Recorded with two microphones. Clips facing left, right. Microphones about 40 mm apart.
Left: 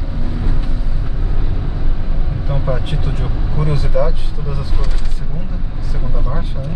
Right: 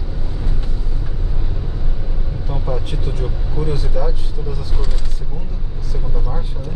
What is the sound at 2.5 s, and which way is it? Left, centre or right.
Speech, left.